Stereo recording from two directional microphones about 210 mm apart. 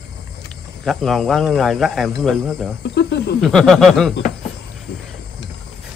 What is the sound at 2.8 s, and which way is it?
Speech, 55° left (ahead or behind).